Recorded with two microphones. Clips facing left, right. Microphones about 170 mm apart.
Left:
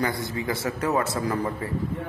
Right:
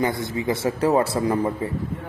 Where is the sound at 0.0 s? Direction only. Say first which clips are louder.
Right 4 dB; 20° right (ahead or behind).